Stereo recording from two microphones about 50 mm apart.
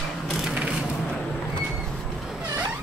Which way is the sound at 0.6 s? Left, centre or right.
Right.